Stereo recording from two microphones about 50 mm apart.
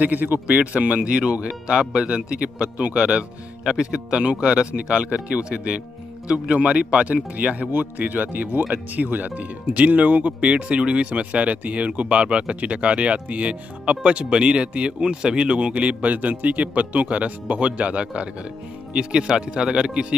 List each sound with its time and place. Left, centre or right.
0.0 s speech: right
0.6 s speech: right